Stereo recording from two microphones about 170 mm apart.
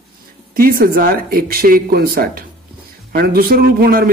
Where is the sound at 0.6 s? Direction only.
60° right (ahead or behind).